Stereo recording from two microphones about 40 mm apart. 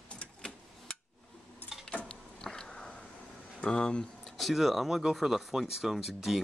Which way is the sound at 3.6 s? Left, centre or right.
Left.